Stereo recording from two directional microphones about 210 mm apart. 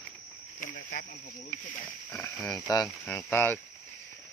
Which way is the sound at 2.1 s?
5° left (ahead or behind).